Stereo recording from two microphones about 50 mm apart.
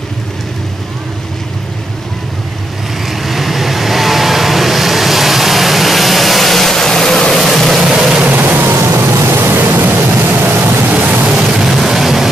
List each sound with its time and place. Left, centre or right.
3.1 s vehicle: centre
7.9 s vehicle: centre
8.3 s vehicle: right
10.9 s music: right
11.4 s music: centre
11.7 s vehicle: centre